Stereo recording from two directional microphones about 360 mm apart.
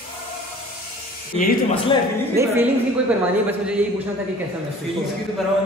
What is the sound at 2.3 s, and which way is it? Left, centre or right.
A woman's voice, centre.